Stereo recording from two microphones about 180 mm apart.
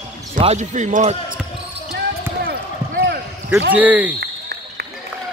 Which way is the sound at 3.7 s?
10° right (ahead or behind).